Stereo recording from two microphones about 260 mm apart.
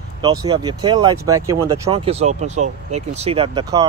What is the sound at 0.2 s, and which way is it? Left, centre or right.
Speech, centre.